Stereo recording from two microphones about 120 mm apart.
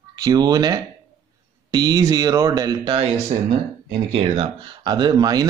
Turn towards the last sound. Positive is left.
turn(degrees=-35)  # may be behind; listen again after turning